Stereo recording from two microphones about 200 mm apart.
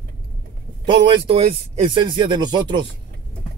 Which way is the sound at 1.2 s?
25° right (ahead or behind).